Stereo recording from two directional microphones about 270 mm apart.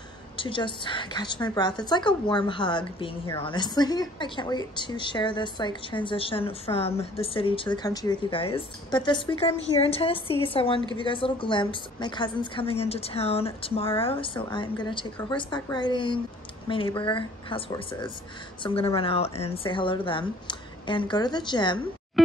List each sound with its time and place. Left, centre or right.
0.4 s a woman's voice: centre